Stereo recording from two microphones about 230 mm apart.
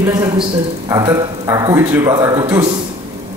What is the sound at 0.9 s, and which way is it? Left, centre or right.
A woman's voice, centre.